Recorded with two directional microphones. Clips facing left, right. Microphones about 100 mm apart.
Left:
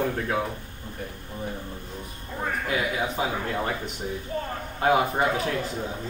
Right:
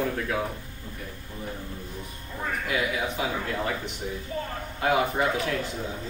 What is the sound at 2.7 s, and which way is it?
Speech, 30° left (ahead or behind).